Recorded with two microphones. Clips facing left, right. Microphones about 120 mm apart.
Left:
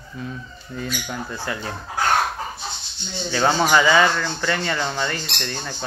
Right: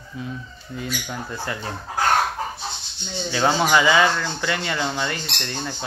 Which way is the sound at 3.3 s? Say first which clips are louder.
Left 1 dB; 10° right (ahead or behind).